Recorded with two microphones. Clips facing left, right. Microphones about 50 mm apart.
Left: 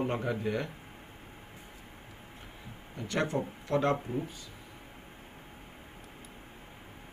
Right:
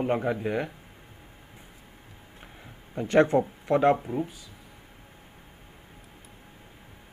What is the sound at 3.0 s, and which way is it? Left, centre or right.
Speech, right.